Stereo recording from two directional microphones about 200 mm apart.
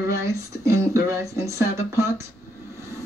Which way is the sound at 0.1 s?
15° right (ahead or behind).